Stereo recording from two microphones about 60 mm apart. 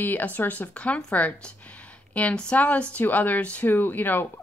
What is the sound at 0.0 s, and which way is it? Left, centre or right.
A woman's voice, left.